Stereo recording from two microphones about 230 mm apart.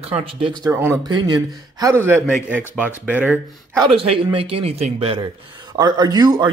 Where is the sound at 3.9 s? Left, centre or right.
Right.